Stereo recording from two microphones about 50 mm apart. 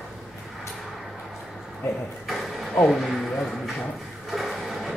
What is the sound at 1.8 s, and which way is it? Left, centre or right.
Speech, left.